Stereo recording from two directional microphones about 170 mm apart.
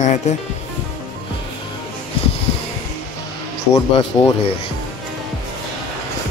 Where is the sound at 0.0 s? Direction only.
45° left (ahead or behind).